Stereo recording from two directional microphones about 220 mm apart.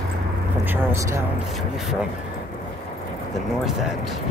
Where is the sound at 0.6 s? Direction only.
10° right (ahead or behind).